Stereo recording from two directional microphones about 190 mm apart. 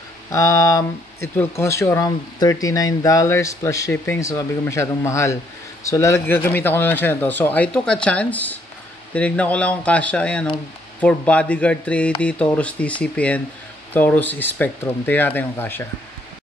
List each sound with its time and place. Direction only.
0.3 s speech: 15° left (ahead or behind)